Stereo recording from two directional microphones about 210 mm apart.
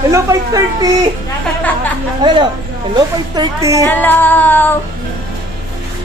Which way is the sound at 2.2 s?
20° right (ahead or behind).